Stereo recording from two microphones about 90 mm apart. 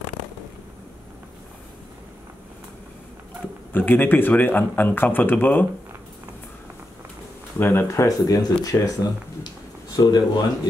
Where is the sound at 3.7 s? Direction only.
20° left (ahead or behind).